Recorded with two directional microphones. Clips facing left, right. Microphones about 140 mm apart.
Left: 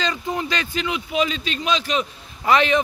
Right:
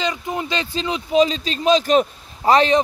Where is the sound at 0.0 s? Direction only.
20° right (ahead or behind).